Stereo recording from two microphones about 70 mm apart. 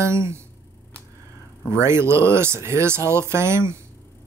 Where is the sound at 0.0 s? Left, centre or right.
Right.